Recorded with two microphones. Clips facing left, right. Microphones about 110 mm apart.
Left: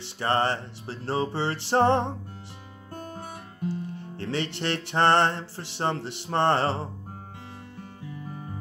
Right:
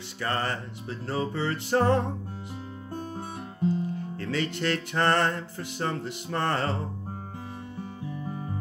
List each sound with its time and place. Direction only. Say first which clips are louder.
0.2 s music: left 5 dB; 30° left (ahead or behind)
3.2 s music: right 4 dB; 25° right (ahead or behind)
4.2 s music: even; 25° left (ahead or behind)